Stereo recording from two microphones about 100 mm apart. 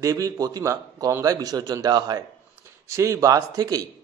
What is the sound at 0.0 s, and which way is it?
A man's voice, 35° right (ahead or behind).